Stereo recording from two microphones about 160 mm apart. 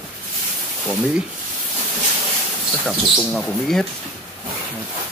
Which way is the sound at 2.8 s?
Centre (ahead or behind).